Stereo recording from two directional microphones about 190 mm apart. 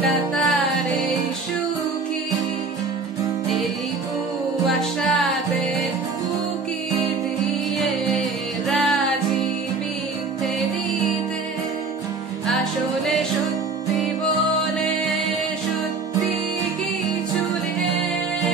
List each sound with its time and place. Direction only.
0.0 s music: centre (ahead or behind)
7.8 s music: centre (ahead or behind)
13.0 s music: centre (ahead or behind)